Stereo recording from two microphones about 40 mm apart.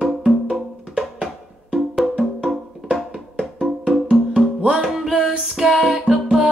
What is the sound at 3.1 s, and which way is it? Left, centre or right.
Music, centre.